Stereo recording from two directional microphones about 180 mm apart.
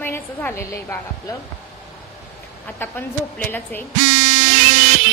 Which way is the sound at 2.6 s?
10° left (ahead or behind).